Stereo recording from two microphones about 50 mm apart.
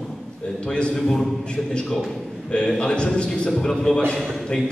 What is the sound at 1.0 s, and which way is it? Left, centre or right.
Mantra, centre.